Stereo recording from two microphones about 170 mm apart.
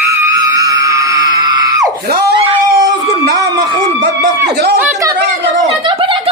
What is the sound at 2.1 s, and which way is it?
Speech, 65° right (ahead or behind).